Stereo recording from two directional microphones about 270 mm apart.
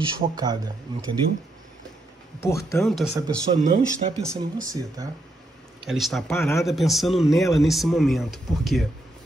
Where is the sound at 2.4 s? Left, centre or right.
Centre.